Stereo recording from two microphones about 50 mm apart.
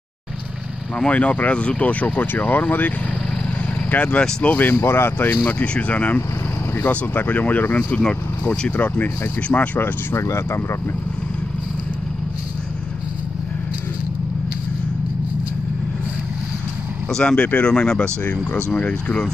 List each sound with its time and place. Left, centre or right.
0.9 s speech: left
3.9 s speech: left
4.2 s speech: centre
4.5 s speech: left
5.5 s speech: left
10.1 s speech: left
17.1 s speech: centre
18.2 s speech: left